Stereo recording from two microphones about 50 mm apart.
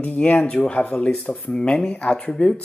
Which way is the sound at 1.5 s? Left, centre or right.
Centre.